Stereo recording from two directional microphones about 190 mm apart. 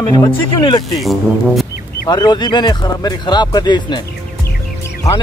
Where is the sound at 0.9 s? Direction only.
Centre (ahead or behind).